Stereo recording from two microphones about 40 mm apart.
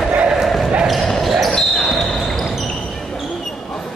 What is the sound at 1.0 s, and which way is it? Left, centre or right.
Basketball bounce, centre.